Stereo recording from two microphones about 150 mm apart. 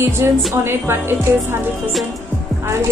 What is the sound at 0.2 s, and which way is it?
Speech, 20° right (ahead or behind).